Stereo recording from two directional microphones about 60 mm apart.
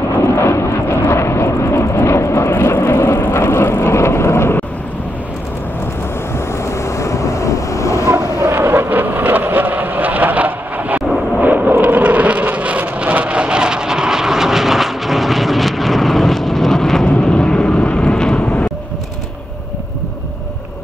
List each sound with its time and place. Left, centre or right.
0.4 s vehicle: left
6.3 s boat: left
8.5 s vehicle: right; by 18.4 s centre
18.4 s vehicle: left